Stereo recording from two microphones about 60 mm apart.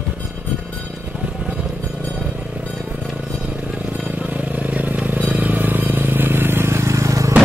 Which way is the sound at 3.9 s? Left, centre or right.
Right.